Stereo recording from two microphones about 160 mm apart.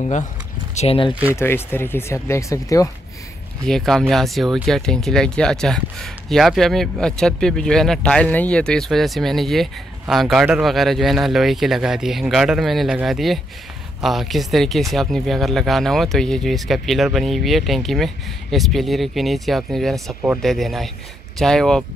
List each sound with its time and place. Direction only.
0.7 s speech: 35° left (ahead or behind)
1.3 s speech: 15° left (ahead or behind)
3.6 s speech: 5° left (ahead or behind)